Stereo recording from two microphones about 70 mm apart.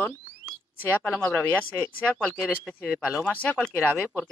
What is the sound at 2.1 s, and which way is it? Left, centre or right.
Speech, centre.